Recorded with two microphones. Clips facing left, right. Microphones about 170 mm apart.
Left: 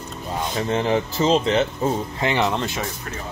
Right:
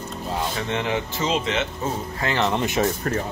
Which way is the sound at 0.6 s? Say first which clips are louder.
Left 9 dB; 35° left (ahead or behind).